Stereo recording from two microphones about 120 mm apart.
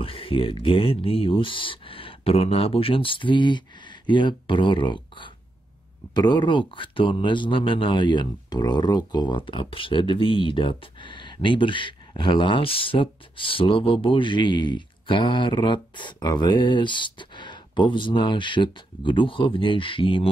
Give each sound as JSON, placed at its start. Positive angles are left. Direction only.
{"t": 0.0, "sound": "a man's voice", "side_deg": 50}